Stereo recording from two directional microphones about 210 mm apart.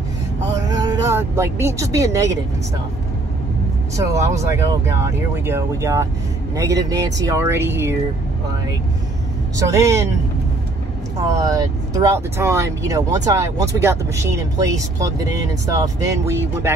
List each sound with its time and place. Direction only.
0.5 s speech: 15° right (ahead or behind)
3.9 s speech: 15° right (ahead or behind)
9.6 s speech: 15° right (ahead or behind)
11.1 s speech: 15° right (ahead or behind)